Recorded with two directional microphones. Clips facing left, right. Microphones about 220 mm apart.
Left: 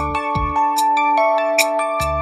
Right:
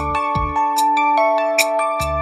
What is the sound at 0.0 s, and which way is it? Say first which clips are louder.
Music: even; centre (ahead or behind).